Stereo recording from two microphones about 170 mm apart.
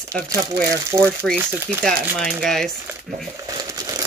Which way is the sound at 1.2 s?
5° left (ahead or behind).